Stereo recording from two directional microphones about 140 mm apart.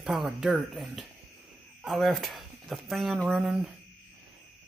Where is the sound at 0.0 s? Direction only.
Centre (ahead or behind).